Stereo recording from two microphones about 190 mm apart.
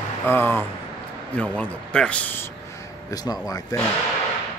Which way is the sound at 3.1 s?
20° left (ahead or behind).